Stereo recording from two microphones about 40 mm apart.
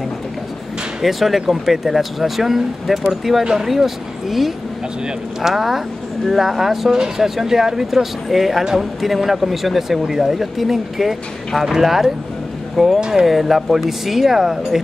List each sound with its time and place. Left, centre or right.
1.0 s speech: centre
13.0 s speech: centre
13.3 s speech: centre